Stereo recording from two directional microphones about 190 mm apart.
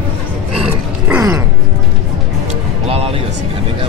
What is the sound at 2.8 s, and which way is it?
Music, 30° right (ahead or behind).